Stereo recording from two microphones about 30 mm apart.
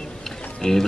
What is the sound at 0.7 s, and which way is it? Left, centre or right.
Speech, left.